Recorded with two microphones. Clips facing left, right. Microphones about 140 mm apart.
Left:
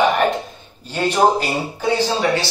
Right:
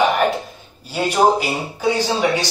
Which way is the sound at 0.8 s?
10° right (ahead or behind).